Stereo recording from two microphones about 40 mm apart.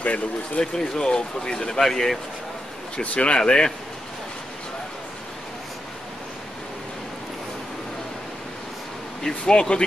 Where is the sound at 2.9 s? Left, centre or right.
Left.